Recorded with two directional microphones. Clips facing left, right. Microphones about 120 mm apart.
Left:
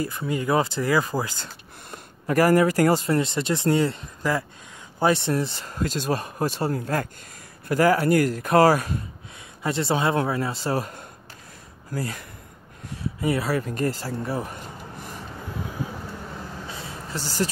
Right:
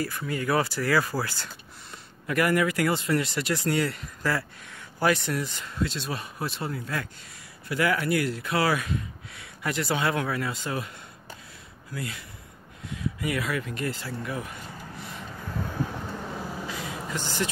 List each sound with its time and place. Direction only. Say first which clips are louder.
0.0 s speech: left 3 dB; 20° left (ahead or behind)
1.9 s speech: left 6 dB; 35° left (ahead or behind)
3.2 s speech: left 4 dB; 25° left (ahead or behind)
5.8 s speech: left 5 dB; 45° left (ahead or behind)
9.6 s speech: left 4 dB; 25° left (ahead or behind)
15.0 s vehicle: left 2 dB; 45° left (ahead or behind)
16.6 s a sound: right 2 dB; 30° left (ahead or behind)
17.1 s speech: left 4 dB; 35° left (ahead or behind)